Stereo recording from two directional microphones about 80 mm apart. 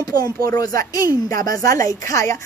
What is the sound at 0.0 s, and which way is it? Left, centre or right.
Speech, left.